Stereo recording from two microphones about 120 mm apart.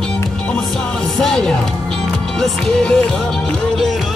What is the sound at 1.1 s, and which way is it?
Music, 5° left (ahead or behind).